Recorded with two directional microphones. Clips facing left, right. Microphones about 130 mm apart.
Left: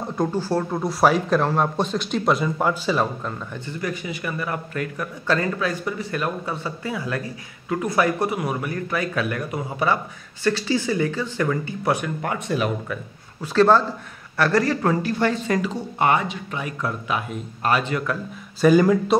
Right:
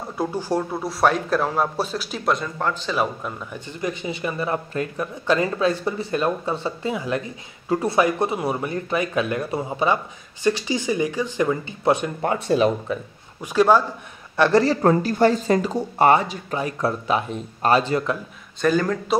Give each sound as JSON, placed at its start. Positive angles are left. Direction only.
{"t": 0.2, "sound": "speech", "side_deg": -15}
{"t": 3.0, "sound": "speech", "side_deg": -10}
{"t": 7.7, "sound": "speech", "side_deg": -30}
{"t": 14.3, "sound": "speech", "side_deg": -20}
{"t": 18.6, "sound": "speech", "side_deg": 10}